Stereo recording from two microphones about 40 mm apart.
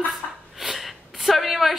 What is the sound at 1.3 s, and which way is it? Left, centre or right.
Speech, centre.